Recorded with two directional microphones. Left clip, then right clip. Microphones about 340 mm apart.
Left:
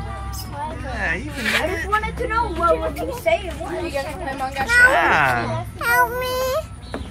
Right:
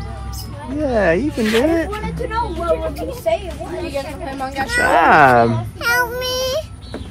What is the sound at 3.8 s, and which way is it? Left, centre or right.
Speech, left.